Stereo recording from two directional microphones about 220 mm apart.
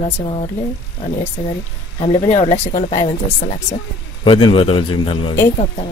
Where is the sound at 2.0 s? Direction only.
30° left (ahead or behind).